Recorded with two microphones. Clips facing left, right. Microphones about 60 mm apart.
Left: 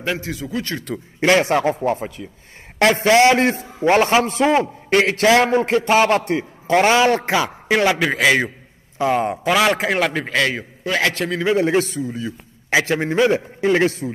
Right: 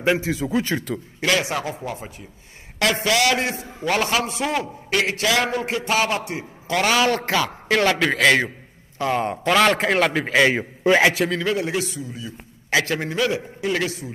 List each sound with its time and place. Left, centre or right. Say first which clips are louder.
0.0 s a man's voice: right 4 dB; centre
1.2 s a man's voice: left 7 dB; left
2.8 s a man's voice: left 7 dB; left
3.3 s a man's voice: left 7 dB; left
3.8 s a man's voice: left 7 dB; left
6.7 s a man's voice: left 5 dB; left; by 10.5 s centre
10.5 s a man's voice: right 5 dB; right
11.1 s a man's voice: even; centre
11.5 s a man's voice: left 7 dB; left
12.7 s a man's voice: left 4 dB; left